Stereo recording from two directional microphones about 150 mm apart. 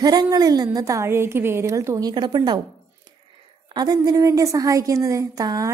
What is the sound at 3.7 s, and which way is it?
A woman's voice, 25° right (ahead or behind).